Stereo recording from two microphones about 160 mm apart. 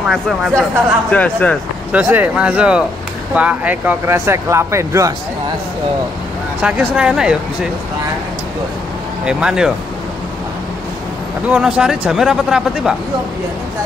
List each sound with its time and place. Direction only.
0.1 s speech: centre (ahead or behind)
1.1 s speech: 10° left (ahead or behind)
1.9 s speech: 10° right (ahead or behind)
6.6 s speech: 5° right (ahead or behind)
9.2 s speech: 5° right (ahead or behind)
11.4 s speech: 5° right (ahead or behind)